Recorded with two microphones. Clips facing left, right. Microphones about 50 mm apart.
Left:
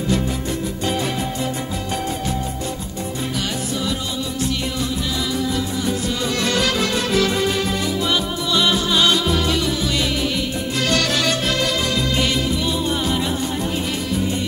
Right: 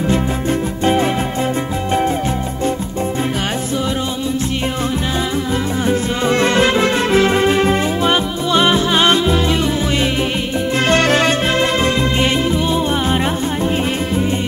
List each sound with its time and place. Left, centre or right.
0.1 s music: right
5.9 s music: right
10.9 s music: right